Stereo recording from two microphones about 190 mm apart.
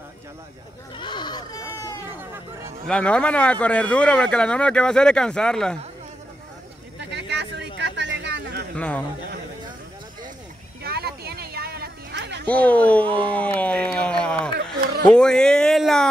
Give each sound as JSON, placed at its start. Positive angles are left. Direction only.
{"t": 0.9, "sound": "goat", "side_deg": 25}
{"t": 2.9, "sound": "speech", "side_deg": 5}
{"t": 7.0, "sound": "a sound", "side_deg": -65}
{"t": 8.7, "sound": "speech", "side_deg": 5}
{"t": 10.8, "sound": "a sound", "side_deg": -55}
{"t": 12.4, "sound": "speech", "side_deg": 5}
{"t": 13.0, "sound": "speech", "side_deg": -30}
{"t": 13.4, "sound": "speech", "side_deg": 5}